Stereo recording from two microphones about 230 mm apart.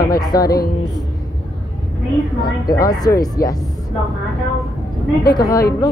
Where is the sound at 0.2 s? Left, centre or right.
Centre.